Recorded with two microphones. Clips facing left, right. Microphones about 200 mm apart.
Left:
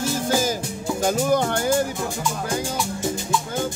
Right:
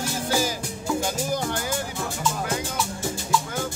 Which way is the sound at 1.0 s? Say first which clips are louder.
Left 7 dB; 60° left (ahead or behind).